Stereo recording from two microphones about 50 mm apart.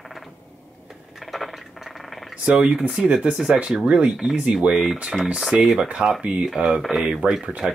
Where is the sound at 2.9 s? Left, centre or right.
Centre.